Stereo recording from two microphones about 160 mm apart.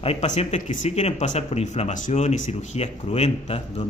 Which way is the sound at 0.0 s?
40° left (ahead or behind).